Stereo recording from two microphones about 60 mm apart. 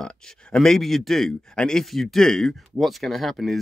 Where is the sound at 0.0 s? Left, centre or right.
Centre.